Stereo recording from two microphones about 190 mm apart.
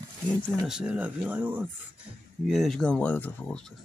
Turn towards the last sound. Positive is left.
turn(degrees=5)  # may be behind; listen again after turning